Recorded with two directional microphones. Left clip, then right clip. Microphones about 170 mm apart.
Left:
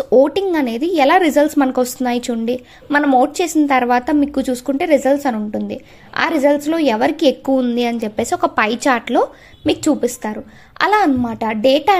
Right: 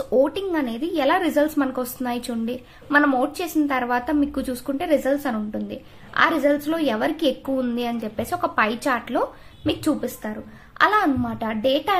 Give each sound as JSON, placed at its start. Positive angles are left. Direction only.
{"t": 0.0, "sound": "speech", "side_deg": 45}